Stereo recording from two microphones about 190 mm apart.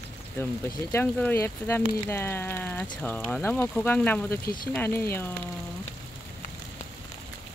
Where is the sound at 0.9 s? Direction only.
10° left (ahead or behind).